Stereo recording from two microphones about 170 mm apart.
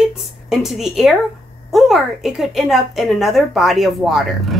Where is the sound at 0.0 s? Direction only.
Centre (ahead or behind).